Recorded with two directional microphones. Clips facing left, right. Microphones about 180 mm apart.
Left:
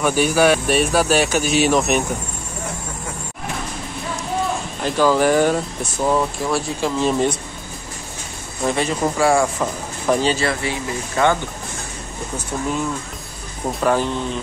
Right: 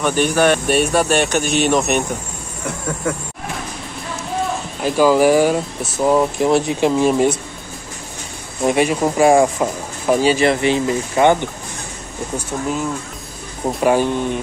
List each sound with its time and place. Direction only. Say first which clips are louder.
0.0 s speech: even; 5° left (ahead or behind)
4.8 s speech: right 3 dB; 10° right (ahead or behind)
6.1 s speech: right 5 dB; 20° right (ahead or behind)
7.1 s speech: right 3 dB; 10° right (ahead or behind)
8.6 s speech: right 4 dB; 15° right (ahead or behind)
13.7 s speech: right 3 dB; 15° right (ahead or behind)